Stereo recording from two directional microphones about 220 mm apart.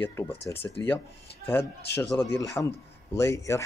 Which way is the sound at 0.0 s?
10° left (ahead or behind).